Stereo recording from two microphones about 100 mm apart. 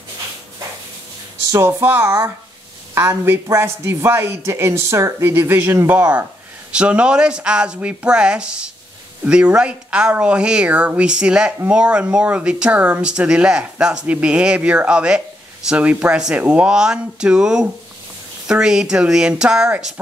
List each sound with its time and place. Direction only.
1.5 s speech: 25° right (ahead or behind); by 19.9 s 5° right (ahead or behind)